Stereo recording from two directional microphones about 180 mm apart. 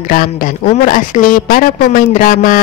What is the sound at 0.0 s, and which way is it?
A man's voice, 50° left (ahead or behind).